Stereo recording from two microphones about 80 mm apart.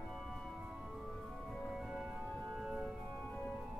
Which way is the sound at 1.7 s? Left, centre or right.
Centre.